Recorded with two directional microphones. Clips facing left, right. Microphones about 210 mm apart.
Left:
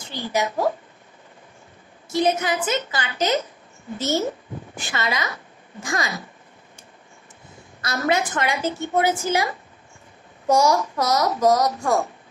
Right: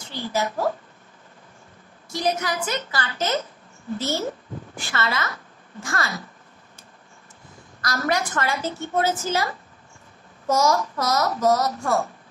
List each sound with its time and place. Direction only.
0.1 s a woman's voice: 15° left (ahead or behind)
2.0 s a woman's voice: 25° left (ahead or behind)
4.7 s a woman's voice: 20° left (ahead or behind)
7.8 s a woman's voice: 25° left (ahead or behind)